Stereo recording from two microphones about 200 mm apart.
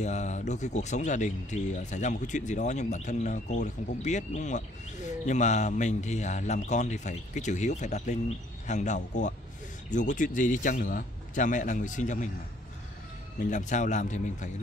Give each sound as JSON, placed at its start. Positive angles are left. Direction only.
{"t": 0.0, "sound": "speech", "side_deg": 35}
{"t": 13.4, "sound": "speech", "side_deg": 40}